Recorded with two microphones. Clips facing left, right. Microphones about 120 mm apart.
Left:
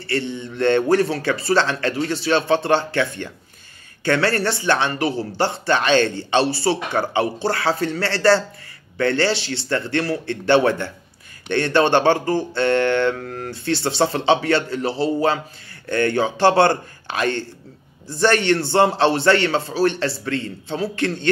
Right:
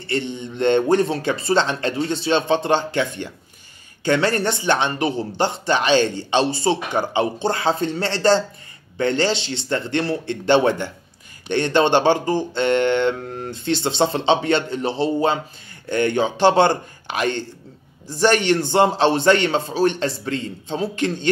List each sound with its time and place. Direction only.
0.0 s speech: 20° right (ahead or behind)